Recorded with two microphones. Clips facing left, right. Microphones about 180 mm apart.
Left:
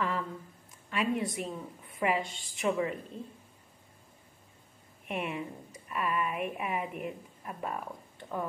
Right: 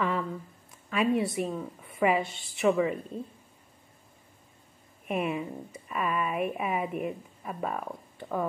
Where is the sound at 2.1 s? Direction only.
5° right (ahead or behind).